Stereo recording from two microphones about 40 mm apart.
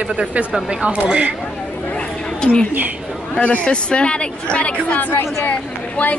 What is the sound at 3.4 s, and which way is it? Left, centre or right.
A woman's voice, left.